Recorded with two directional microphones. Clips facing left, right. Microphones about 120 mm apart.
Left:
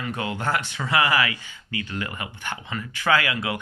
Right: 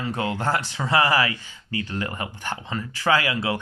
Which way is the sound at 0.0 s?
30° right (ahead or behind).